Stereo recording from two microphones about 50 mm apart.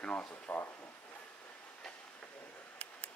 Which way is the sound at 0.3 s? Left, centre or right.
Left.